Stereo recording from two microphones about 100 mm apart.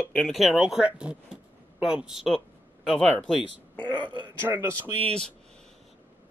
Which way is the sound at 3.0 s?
10° left (ahead or behind).